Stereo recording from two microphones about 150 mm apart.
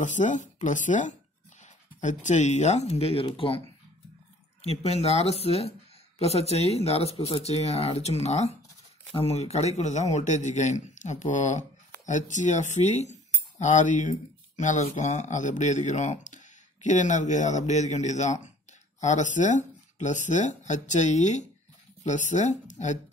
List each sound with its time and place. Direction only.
0.0 s speech: 55° left (ahead or behind)